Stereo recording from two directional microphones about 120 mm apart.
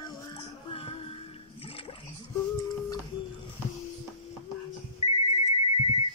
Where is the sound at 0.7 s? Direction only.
50° left (ahead or behind).